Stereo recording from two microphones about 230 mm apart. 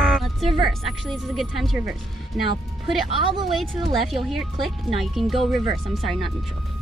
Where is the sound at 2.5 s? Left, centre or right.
Right.